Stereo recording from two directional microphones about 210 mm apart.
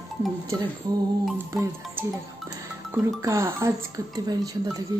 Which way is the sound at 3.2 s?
15° right (ahead or behind).